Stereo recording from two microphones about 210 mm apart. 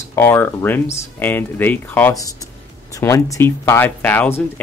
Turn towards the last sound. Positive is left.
turn(degrees=10)  # may be behind; listen again after turning